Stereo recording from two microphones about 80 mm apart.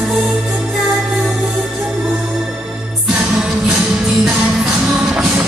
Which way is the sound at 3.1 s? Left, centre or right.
Centre.